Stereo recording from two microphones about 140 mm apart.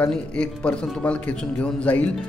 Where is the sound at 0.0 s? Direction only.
10° left (ahead or behind).